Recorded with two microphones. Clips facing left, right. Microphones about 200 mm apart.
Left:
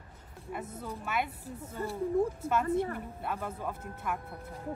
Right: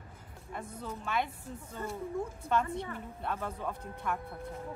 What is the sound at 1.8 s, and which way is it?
Speech, 35° left (ahead or behind).